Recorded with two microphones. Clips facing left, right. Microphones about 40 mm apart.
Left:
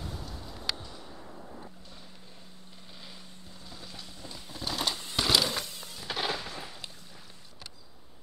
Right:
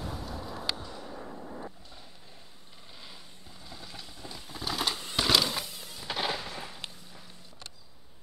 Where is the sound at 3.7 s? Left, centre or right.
Centre.